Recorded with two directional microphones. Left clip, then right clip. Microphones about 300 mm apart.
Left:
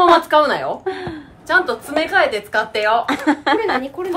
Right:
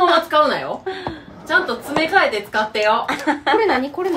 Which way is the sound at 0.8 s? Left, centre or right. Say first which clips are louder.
Left 2 dB; left.